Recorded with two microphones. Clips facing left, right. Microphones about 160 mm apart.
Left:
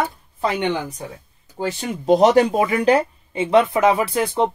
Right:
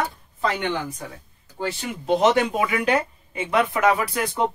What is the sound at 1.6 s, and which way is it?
Speech, 45° left (ahead or behind).